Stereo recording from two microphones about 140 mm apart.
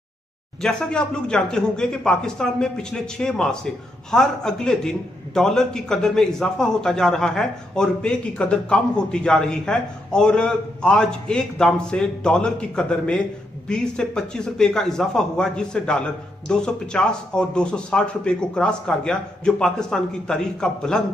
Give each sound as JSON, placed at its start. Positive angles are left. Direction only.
{"t": 0.6, "sound": "speech", "side_deg": 5}